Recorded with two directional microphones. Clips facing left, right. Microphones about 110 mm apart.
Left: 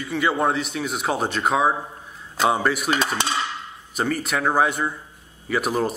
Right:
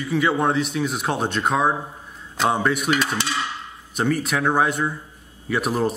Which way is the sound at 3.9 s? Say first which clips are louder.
Right 2 dB; centre (ahead or behind).